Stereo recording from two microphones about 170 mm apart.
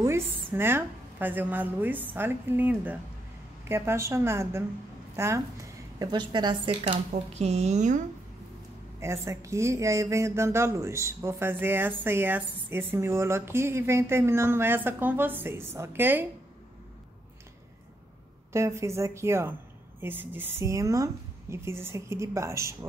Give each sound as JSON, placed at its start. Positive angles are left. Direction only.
{"t": 0.0, "sound": "a woman's voice", "side_deg": -15}
{"t": 9.0, "sound": "speech", "side_deg": -15}
{"t": 18.5, "sound": "speech", "side_deg": -15}